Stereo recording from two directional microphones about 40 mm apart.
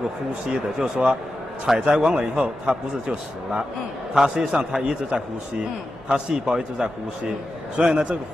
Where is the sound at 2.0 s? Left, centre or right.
Right.